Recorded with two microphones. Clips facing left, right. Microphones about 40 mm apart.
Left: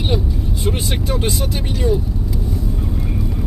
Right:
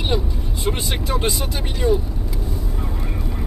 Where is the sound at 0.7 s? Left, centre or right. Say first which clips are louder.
Left 1 dB; centre.